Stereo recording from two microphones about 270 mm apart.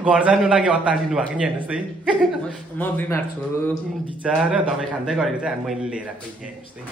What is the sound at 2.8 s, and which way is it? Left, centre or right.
Speech, centre.